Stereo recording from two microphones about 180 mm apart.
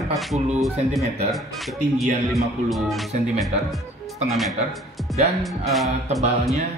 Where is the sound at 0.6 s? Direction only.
Centre (ahead or behind).